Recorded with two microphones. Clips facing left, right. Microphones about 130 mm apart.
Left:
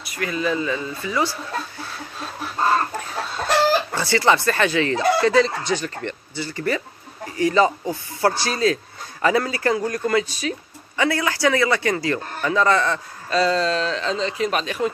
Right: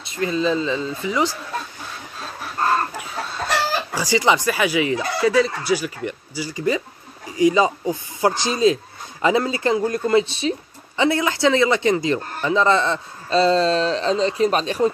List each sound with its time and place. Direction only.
0.0 s a man's voice: 25° right (ahead or behind)
3.9 s a man's voice: 15° right (ahead or behind); by 14.9 s 35° right (ahead or behind)